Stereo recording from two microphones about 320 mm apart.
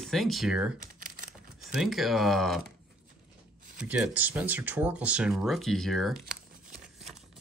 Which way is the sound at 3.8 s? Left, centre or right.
Centre.